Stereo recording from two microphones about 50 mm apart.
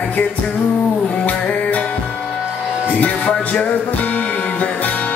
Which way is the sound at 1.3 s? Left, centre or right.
Left.